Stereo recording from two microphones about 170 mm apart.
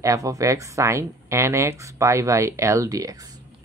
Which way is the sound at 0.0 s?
20° right (ahead or behind).